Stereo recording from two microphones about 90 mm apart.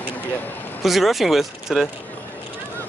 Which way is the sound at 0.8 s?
Centre (ahead or behind).